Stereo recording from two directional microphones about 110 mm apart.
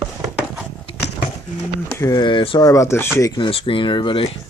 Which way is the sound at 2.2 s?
50° left (ahead or behind).